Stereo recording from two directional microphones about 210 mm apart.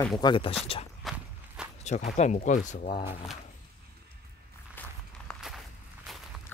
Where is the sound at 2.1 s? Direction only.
35° left (ahead or behind).